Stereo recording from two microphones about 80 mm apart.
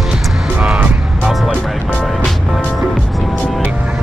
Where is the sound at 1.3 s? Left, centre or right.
Centre.